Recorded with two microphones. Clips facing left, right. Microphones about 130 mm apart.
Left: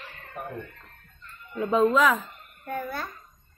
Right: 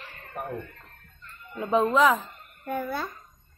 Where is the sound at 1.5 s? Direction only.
25° right (ahead or behind).